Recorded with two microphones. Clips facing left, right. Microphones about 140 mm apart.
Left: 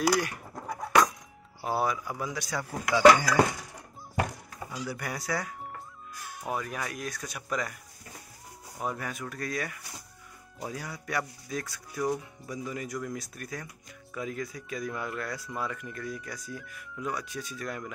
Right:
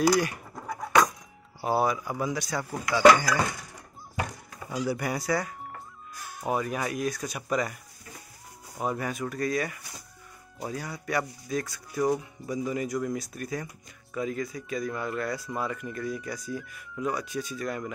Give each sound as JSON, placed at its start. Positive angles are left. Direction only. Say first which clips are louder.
{"t": 0.0, "sound": "a sound", "louder": "right 3 dB", "side_deg": 0}
{"t": 1.6, "sound": "speech", "louder": "right 3 dB", "side_deg": -5}
{"t": 4.6, "sound": "speech", "louder": "right 7 dB", "side_deg": -25}
{"t": 4.9, "sound": "speech", "louder": "right 3 dB", "side_deg": -5}
{"t": 6.5, "sound": "speech", "louder": "right 5 dB", "side_deg": -10}
{"t": 8.7, "sound": "speech", "louder": "right 4 dB", "side_deg": -10}